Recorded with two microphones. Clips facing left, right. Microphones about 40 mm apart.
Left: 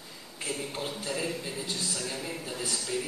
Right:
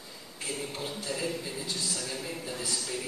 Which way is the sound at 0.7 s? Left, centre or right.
Centre.